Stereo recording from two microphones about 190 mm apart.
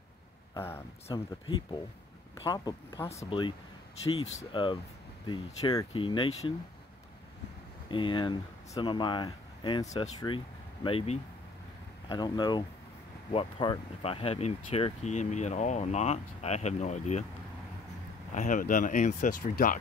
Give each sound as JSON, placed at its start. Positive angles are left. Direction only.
{"t": 0.6, "sound": "speech", "side_deg": 15}
{"t": 2.4, "sound": "speech", "side_deg": 20}
{"t": 7.9, "sound": "speech", "side_deg": 25}
{"t": 9.8, "sound": "speech", "side_deg": 35}
{"t": 10.2, "sound": "speech", "side_deg": 25}
{"t": 18.3, "sound": "speech", "side_deg": 40}